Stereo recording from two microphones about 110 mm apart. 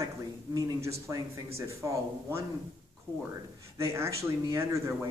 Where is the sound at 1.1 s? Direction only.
30° right (ahead or behind).